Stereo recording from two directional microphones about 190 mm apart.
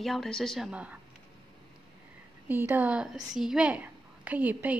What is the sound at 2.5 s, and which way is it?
A woman's voice, 10° right (ahead or behind).